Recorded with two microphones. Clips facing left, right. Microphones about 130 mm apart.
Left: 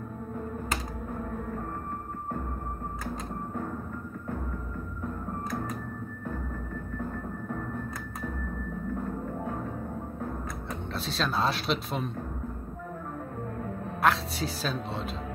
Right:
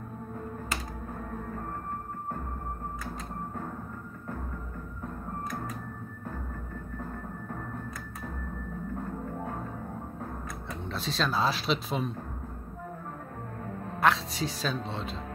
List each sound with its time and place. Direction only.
10.7 s speech: centre (ahead or behind)
14.0 s speech: centre (ahead or behind)